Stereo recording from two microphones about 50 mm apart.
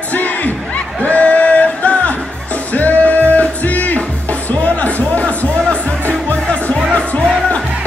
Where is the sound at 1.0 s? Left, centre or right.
Left.